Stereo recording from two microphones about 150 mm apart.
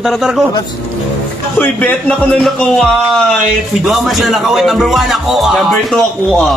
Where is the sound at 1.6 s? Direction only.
10° left (ahead or behind).